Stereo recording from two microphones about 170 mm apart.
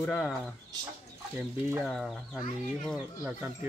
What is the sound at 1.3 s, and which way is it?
Speech, 10° right (ahead or behind).